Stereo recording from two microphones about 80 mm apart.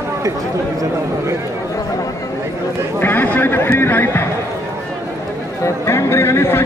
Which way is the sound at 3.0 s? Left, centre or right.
Left.